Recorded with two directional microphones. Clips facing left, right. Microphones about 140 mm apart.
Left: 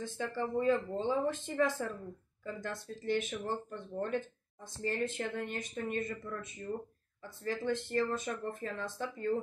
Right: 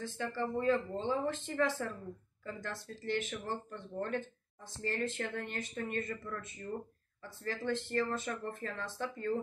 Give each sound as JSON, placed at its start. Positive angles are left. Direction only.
{"t": 0.0, "sound": "speech", "side_deg": 15}